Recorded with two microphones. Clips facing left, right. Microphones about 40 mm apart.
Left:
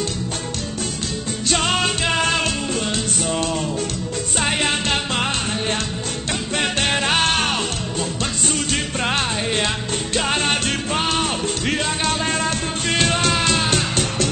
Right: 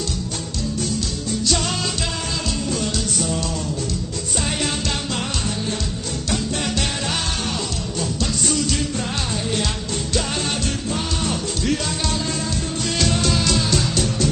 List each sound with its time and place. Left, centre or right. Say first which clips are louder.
1.4 s music: left 5 dB; left
8.0 s music: right 1 dB; left